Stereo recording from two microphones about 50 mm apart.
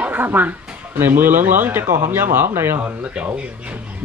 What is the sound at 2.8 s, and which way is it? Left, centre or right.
Speech, right.